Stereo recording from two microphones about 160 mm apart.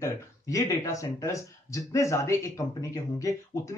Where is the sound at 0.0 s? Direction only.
20° left (ahead or behind).